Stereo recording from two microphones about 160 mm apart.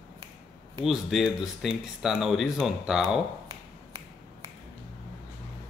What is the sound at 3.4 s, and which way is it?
Finger snapping, 30° right (ahead or behind).